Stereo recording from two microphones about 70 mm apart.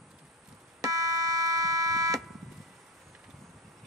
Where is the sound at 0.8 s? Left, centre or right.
Right.